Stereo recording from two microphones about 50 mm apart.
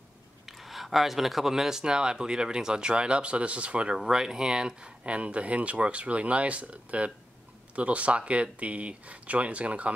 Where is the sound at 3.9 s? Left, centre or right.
Centre.